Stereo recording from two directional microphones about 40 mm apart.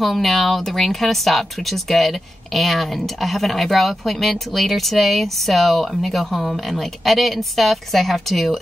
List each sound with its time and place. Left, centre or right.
0.0 s speech: centre